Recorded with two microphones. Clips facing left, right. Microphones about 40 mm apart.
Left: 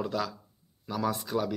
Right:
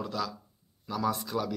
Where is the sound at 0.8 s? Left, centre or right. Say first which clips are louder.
Even; centre.